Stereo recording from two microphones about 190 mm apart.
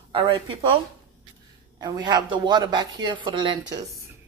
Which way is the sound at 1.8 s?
20° right (ahead or behind).